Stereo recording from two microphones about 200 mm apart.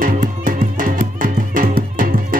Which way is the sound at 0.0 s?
45° right (ahead or behind).